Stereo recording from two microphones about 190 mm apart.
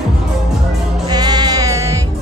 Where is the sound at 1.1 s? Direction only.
20° right (ahead or behind).